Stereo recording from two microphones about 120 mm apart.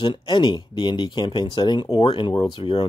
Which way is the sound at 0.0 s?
45° left (ahead or behind).